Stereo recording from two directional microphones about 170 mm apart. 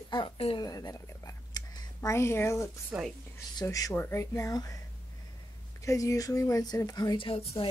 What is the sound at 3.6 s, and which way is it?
A woman's voice, 20° left (ahead or behind).